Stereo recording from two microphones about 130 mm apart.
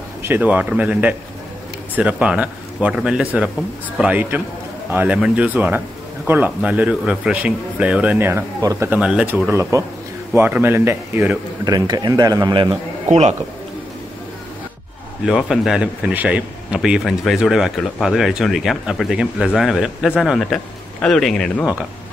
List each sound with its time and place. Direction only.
0.2 s speech: 15° right (ahead or behind)
8.9 s speech: 10° right (ahead or behind)
11.6 s a man's voice: 30° right (ahead or behind)
15.2 s a man's voice: 5° right (ahead or behind)